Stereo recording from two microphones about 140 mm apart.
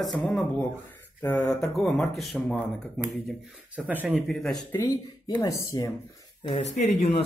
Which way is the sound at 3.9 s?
15° right (ahead or behind).